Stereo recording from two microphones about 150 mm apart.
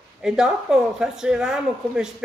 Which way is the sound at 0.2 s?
5° right (ahead or behind).